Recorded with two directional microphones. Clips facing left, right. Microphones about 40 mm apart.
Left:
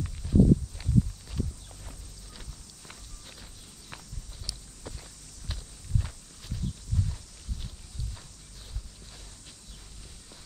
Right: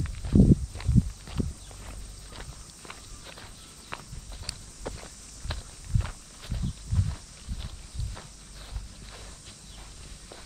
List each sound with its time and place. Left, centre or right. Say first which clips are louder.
0.0 s walk: right 1 dB; right